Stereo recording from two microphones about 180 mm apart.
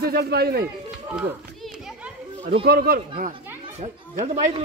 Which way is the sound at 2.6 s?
55° right (ahead or behind).